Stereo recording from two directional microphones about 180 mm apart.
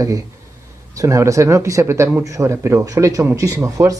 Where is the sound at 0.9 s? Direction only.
15° right (ahead or behind).